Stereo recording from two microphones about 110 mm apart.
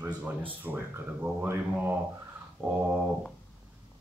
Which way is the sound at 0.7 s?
15° right (ahead or behind).